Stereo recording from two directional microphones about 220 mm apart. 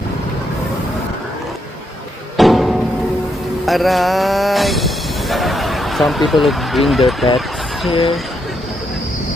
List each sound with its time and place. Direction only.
2.3 s music: centre (ahead or behind)
3.6 s speech: centre (ahead or behind)